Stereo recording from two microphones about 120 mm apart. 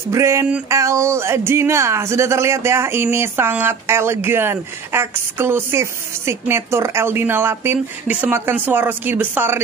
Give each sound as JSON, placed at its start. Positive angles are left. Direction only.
{"t": 0.1, "sound": "speech", "side_deg": -25}